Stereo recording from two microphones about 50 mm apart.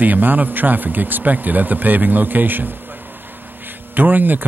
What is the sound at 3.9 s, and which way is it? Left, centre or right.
Speech, right.